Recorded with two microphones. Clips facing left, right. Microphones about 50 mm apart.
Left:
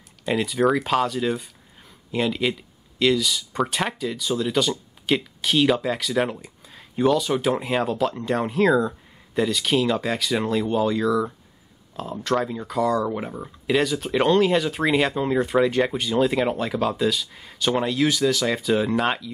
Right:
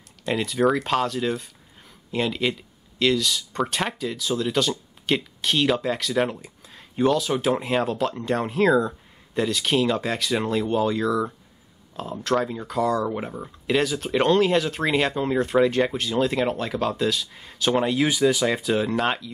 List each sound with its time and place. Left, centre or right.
0.2 s speech: centre